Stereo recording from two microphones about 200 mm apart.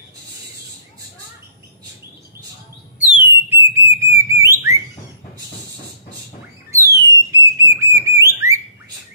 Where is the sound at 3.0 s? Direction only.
10° right (ahead or behind).